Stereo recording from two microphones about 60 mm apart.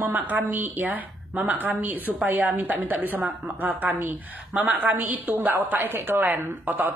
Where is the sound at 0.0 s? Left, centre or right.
Right.